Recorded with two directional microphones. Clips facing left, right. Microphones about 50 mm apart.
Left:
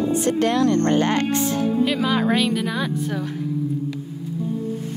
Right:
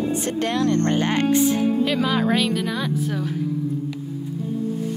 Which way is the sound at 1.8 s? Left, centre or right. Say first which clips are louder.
Left 1 dB; centre.